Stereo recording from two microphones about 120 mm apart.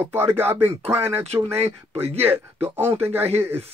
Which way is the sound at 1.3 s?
60° right (ahead or behind).